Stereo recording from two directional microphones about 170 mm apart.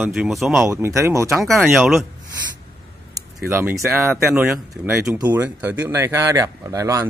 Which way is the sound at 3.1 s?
15° right (ahead or behind).